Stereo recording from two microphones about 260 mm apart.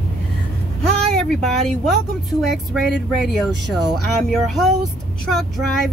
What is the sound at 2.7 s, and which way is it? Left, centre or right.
Speech, centre.